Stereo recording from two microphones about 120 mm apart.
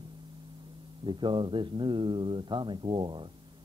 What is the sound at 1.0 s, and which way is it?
Speech, 40° right (ahead or behind).